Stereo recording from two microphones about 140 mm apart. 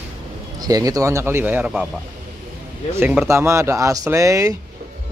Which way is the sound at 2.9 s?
15° right (ahead or behind).